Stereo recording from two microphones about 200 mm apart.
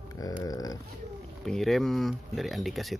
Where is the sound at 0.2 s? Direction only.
20° left (ahead or behind).